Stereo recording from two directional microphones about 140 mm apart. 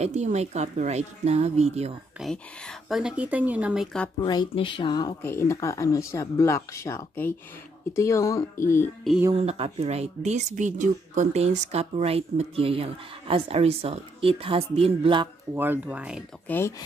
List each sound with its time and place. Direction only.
0.0 s speech: 55° right (ahead or behind)
2.1 s speech: 5° left (ahead or behind)
3.0 s speech: 5° right (ahead or behind)
4.2 s speech: 35° left (ahead or behind)
5.2 s speech: 20° left (ahead or behind)
9.3 s speech: 45° right (ahead or behind)
15.5 s speech: 15° right (ahead or behind)
16.4 s speech: 15° left (ahead or behind)